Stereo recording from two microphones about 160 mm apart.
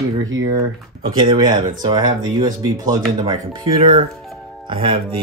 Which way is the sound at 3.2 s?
35° right (ahead or behind).